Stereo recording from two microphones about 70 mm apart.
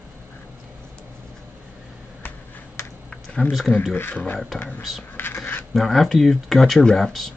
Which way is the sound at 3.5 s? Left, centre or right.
Centre.